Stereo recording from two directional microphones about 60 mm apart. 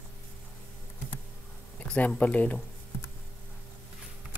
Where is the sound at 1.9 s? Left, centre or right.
Left.